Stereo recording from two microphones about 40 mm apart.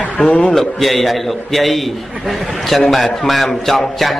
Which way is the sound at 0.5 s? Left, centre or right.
Centre.